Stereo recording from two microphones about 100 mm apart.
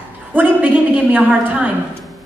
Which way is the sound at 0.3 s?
15° right (ahead or behind).